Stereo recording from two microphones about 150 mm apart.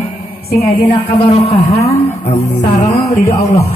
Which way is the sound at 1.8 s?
20° left (ahead or behind).